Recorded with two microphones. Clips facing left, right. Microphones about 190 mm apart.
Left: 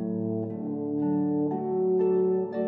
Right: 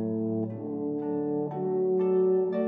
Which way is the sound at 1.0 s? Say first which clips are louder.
Left 7 dB; 35° left (ahead or behind).